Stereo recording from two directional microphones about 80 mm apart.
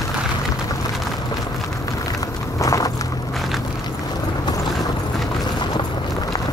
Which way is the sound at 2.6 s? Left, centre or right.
Left.